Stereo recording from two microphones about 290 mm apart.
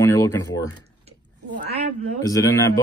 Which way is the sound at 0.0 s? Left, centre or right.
Centre.